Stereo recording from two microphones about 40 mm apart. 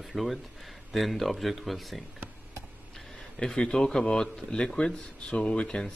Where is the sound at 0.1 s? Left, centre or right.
Centre.